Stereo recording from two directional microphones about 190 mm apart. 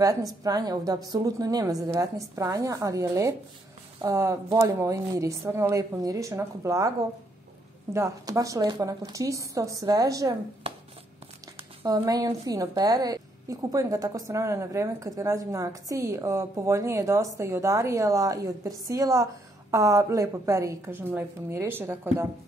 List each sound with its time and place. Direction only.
0.0 s a woman's voice: 20° right (ahead or behind)
7.9 s a woman's voice: 15° right (ahead or behind)
10.6 s a sound: 30° right (ahead or behind)
11.8 s a woman's voice: 20° right (ahead or behind)